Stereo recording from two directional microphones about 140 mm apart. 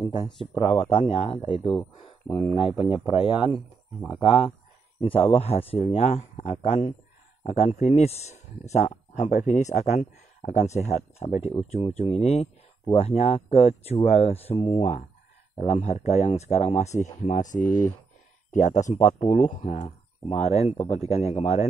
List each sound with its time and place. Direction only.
0.6 s speech: 45° left (ahead or behind)
2.2 s speech: 5° left (ahead or behind)
2.7 s speech: 10° right (ahead or behind)
3.0 s speech: 40° left (ahead or behind)